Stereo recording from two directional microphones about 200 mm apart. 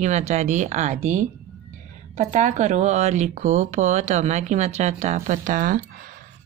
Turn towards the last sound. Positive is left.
turn(degrees=-45)  # may be behind; listen again after turning